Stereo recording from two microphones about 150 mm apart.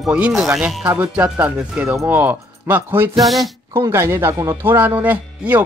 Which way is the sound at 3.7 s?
20° right (ahead or behind).